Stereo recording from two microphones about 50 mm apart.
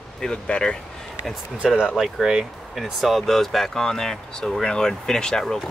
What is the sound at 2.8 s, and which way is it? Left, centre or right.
Speech, centre.